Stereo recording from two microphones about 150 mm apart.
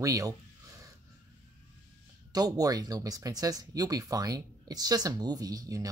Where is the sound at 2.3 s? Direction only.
25° right (ahead or behind).